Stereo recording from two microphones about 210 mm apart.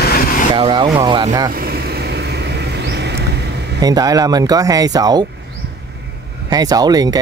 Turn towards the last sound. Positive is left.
turn(degrees=-20)  # may be behind; listen again after turning